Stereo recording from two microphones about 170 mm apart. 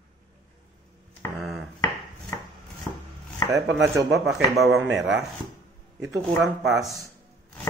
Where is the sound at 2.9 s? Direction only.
15° left (ahead or behind).